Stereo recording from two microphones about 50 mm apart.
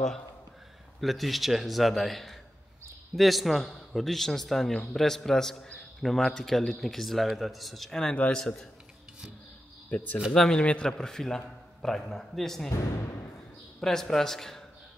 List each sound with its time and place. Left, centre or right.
1.0 s a man's voice: centre
8.1 s a man's voice: centre
9.8 s speech: left
10.5 s a man's voice: left
13.7 s a man's voice: centre